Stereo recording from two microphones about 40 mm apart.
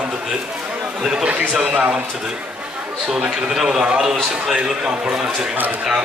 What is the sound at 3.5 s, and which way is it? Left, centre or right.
Speech, centre.